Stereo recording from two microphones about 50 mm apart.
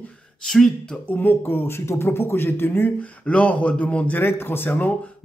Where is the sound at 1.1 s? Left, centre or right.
Left.